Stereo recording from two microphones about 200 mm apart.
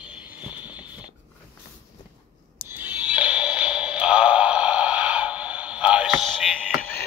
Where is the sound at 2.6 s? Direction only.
10° right (ahead or behind); by 7.0 s 5° left (ahead or behind).